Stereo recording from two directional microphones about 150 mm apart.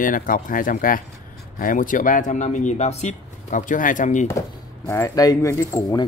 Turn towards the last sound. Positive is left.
turn(degrees=20)  # may be behind; listen again after turning